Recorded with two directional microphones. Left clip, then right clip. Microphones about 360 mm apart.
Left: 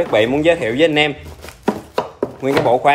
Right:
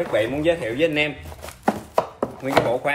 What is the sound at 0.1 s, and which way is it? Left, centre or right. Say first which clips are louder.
Speech: left 7 dB; centre.